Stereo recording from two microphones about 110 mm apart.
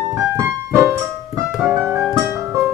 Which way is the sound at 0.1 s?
25° right (ahead or behind).